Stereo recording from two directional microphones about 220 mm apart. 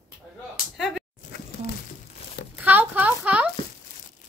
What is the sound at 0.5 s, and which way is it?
Slap, centre (ahead or behind).